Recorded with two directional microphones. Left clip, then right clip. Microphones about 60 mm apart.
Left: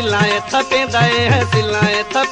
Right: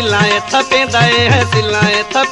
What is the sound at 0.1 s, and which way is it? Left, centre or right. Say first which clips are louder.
Music: right 3 dB; right.